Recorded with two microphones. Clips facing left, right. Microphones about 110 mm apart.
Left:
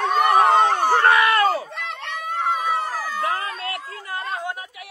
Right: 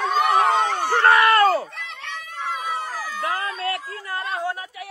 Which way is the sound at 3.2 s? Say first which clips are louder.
Right 2 dB; 30° left (ahead or behind).